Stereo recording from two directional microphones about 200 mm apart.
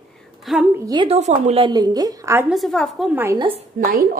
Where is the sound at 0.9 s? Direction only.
25° right (ahead or behind).